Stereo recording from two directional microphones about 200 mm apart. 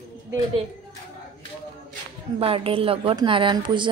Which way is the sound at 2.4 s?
25° right (ahead or behind).